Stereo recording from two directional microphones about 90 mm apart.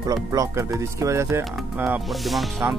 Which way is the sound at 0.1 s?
40° right (ahead or behind).